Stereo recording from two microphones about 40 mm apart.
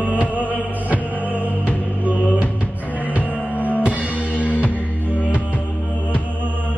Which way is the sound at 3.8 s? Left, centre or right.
Right.